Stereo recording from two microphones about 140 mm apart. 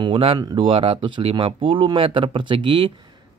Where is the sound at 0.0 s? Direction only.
40° right (ahead or behind).